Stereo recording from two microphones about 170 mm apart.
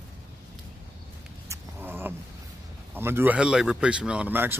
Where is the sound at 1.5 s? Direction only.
15° right (ahead or behind).